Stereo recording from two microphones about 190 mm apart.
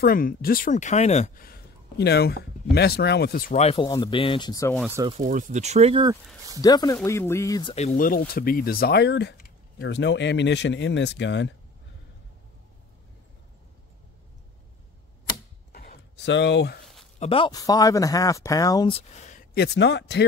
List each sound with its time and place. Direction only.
0.0 s speech: 50° left (ahead or behind)
1.4 s speech: 55° left (ahead or behind)
3.5 s speech: 30° left (ahead or behind)
5.2 s speech: 40° right (ahead or behind)
6.6 s speech: 20° left (ahead or behind)
7.7 s speech: 40° left (ahead or behind); by 11.5 s 70° left (ahead or behind)
15.7 s a sound: 55° left (ahead or behind)
17.2 s speech: 30° left (ahead or behind)
18.9 s speech: 40° left (ahead or behind)
19.5 s speech: 60° left (ahead or behind)